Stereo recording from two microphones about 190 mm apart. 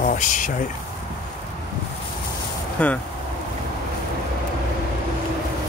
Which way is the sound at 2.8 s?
5° left (ahead or behind).